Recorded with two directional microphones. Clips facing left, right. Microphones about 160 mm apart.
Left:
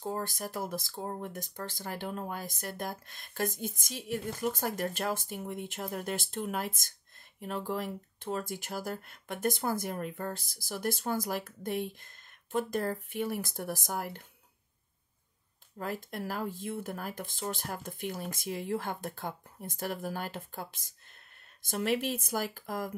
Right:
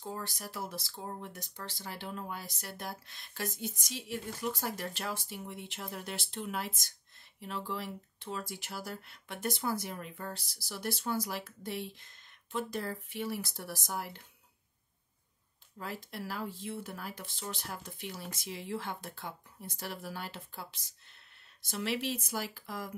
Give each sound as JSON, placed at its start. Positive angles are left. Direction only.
{"t": 0.0, "sound": "speech", "side_deg": 45}
{"t": 15.8, "sound": "speech", "side_deg": 45}